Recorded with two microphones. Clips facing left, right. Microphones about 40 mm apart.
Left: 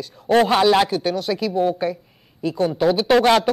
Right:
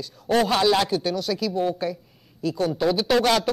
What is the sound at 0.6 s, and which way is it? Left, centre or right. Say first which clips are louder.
Speech: left 4 dB; left.